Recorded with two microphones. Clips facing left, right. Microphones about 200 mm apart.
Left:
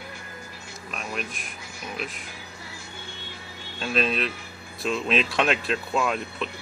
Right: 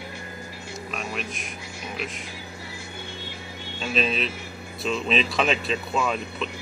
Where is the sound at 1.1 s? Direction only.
Centre (ahead or behind).